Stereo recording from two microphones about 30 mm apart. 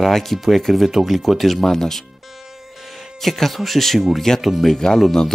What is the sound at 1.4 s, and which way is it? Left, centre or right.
Speech, centre.